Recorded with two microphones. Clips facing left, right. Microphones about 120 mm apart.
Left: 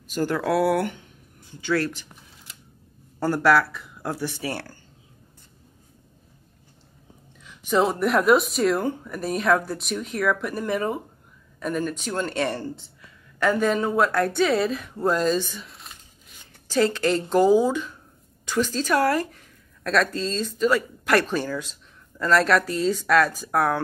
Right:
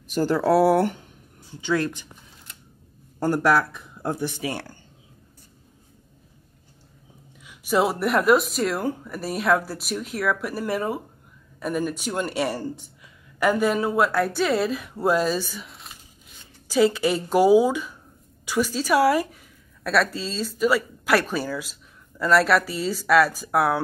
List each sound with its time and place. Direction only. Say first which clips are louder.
0.2 s speech: right 3 dB; 30° right (ahead or behind)
1.6 s speech: even; 20° right (ahead or behind)
3.2 s speech: left 1 dB; 15° right (ahead or behind)
7.4 s a woman's voice: even; 5° right (ahead or behind)